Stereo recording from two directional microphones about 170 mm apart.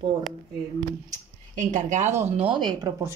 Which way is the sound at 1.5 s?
45° right (ahead or behind).